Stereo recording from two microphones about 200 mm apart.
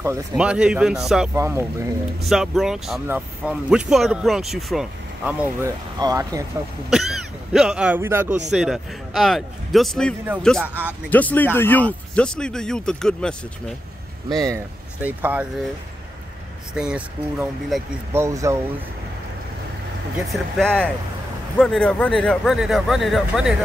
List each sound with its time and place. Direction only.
0.0 s speech: 15° right (ahead or behind)
0.4 s speech: 5° right (ahead or behind)
1.3 s speech: 15° right (ahead or behind)
2.2 s speech: centre (ahead or behind)
5.9 s speech: 20° right (ahead or behind)
6.9 s speech: centre (ahead or behind)
10.6 s speech: 10° right (ahead or behind)
11.1 s speech: 10° left (ahead or behind)
14.3 s speech: 15° right (ahead or behind)
16.7 s speech: 5° right (ahead or behind)
18.1 s speech: 15° right (ahead or behind)
20.2 s speech: centre (ahead or behind)